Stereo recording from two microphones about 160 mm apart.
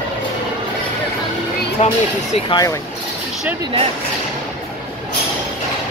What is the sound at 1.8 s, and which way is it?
Speech, 45° left (ahead or behind).